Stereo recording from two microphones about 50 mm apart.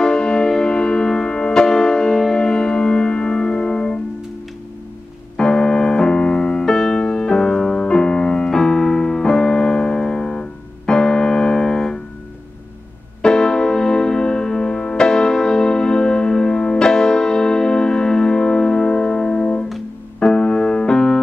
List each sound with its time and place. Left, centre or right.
0.0 s music: centre
5.4 s keyboard: centre
13.2 s music: centre